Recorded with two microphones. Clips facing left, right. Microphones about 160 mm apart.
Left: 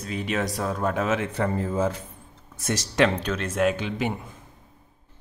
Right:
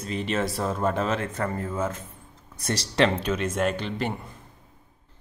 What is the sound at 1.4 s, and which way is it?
Speech, 15° left (ahead or behind).